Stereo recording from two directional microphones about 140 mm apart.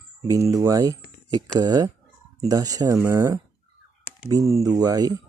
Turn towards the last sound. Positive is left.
turn(degrees=-25)  # may be behind; listen again after turning